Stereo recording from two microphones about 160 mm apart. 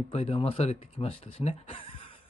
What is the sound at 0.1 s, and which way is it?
Speech, 40° left (ahead or behind).